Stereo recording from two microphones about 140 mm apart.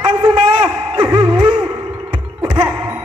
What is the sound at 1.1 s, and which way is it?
Music, 40° right (ahead or behind).